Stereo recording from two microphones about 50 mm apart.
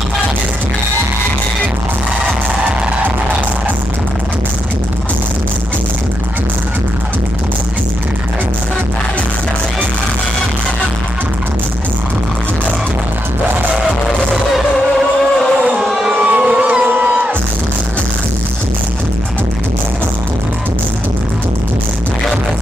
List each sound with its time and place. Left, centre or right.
14.3 s music: centre
15.8 s crowd: centre
16.3 s a sound: right
16.8 s music: right